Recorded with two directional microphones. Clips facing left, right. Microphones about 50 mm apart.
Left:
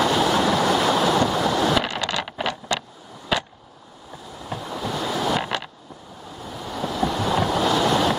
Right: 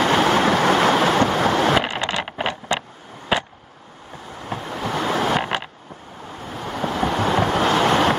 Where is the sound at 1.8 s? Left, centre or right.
Right.